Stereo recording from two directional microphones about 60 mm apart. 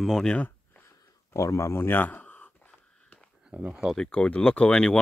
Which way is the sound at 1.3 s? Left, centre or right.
Left.